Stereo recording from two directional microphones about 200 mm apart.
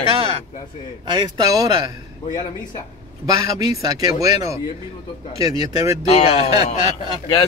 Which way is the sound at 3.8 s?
20° right (ahead or behind).